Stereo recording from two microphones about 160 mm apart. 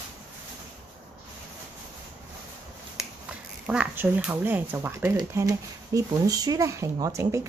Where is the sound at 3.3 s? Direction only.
5° right (ahead or behind).